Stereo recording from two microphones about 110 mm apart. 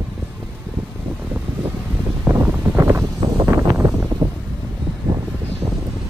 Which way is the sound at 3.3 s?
35° right (ahead or behind).